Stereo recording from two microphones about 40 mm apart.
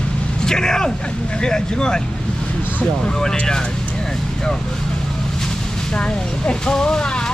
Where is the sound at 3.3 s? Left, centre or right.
Left.